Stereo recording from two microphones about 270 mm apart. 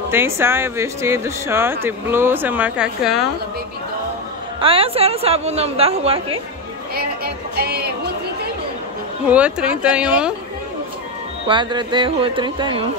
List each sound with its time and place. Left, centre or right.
0.1 s speech: centre
4.6 s a woman's voice: centre
7.0 s music: right
9.3 s speech: centre
11.4 s speech: centre